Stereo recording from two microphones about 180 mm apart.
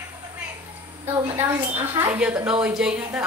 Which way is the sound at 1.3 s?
10° right (ahead or behind).